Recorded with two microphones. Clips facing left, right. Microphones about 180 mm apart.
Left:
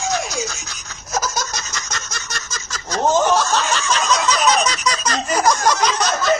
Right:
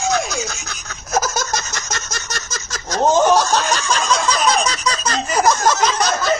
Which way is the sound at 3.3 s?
35° right (ahead or behind).